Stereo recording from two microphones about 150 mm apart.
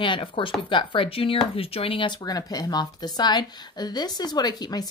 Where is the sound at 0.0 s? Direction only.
35° left (ahead or behind).